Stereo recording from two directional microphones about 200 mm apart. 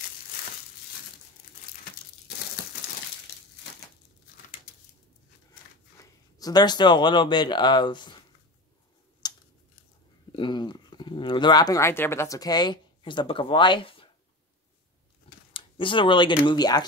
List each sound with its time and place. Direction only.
6.3 s speech: 20° left (ahead or behind)
9.2 s scissors: 20° left (ahead or behind)
10.3 s speech: 25° left (ahead or behind)
15.5 s speech: 25° left (ahead or behind)